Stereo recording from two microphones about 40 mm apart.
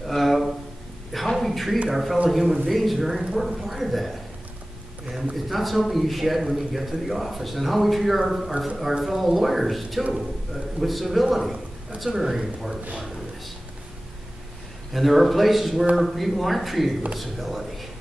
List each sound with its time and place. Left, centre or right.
0.0 s a sound: centre
1.9 s speech: centre
5.1 s a man's voice: centre
12.1 s speech: right
14.9 s speech: centre